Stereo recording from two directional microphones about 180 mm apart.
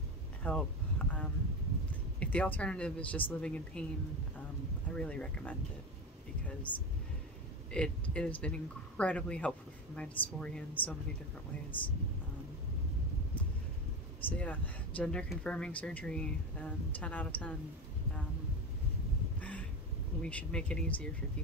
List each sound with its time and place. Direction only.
0.4 s a sound: 10° left (ahead or behind)
2.1 s speech: 10° left (ahead or behind)
4.9 s speech: 5° left (ahead or behind)
6.7 s speech: 25° left (ahead or behind)
7.7 s speech: 5° left (ahead or behind)
14.3 s speech: 10° left (ahead or behind)
20.2 s speech: 5° left (ahead or behind)